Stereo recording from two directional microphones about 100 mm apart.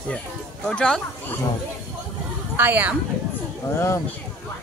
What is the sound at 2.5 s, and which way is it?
Speech, 20° right (ahead or behind).